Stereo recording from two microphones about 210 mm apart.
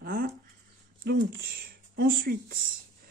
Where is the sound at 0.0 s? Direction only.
45° right (ahead or behind).